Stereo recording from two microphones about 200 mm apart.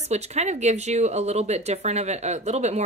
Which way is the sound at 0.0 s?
35° right (ahead or behind).